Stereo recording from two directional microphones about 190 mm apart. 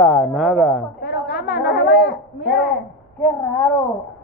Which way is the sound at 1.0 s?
60° left (ahead or behind).